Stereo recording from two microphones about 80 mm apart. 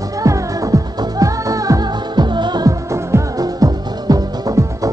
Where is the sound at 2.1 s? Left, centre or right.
Right.